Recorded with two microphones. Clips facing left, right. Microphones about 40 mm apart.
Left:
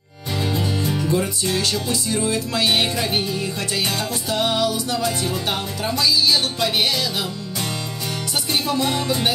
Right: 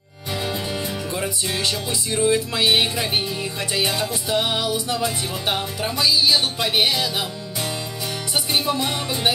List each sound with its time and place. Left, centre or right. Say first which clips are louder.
1.1 s music: left 3 dB; centre
8.5 s music: left 2 dB; centre